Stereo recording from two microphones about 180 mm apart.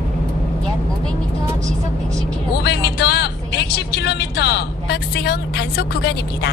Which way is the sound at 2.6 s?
70° left (ahead or behind).